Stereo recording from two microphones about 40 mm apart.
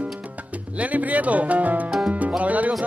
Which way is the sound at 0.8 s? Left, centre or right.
Right.